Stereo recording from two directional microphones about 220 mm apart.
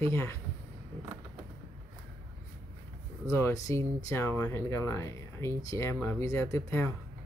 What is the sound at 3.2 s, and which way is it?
Speech, 10° left (ahead or behind).